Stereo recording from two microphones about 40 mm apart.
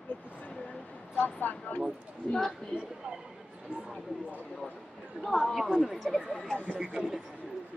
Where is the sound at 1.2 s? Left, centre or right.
Left.